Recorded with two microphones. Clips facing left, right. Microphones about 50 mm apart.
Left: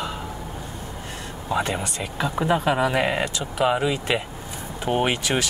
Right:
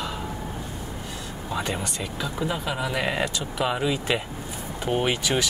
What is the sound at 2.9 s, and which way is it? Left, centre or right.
Speech, centre.